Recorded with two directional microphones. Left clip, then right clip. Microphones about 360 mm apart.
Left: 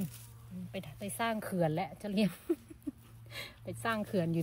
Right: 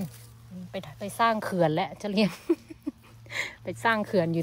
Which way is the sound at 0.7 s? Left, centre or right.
Centre.